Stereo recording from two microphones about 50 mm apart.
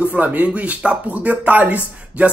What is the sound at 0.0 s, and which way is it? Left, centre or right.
Speech, right.